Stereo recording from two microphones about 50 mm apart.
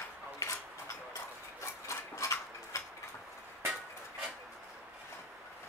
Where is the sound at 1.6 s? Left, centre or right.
Left.